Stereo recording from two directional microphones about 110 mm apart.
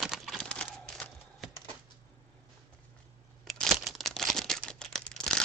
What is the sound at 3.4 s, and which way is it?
Crumpling, centre (ahead or behind).